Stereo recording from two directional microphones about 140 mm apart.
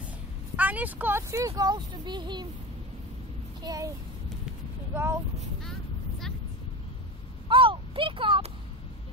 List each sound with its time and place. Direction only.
0.6 s speech: 10° right (ahead or behind); by 2.4 s 35° right (ahead or behind)
3.6 s speech: 30° right (ahead or behind)
4.9 s speech: 20° right (ahead or behind)
5.6 s vehicle: 5° left (ahead or behind)
7.4 s a sound: 35° right (ahead or behind)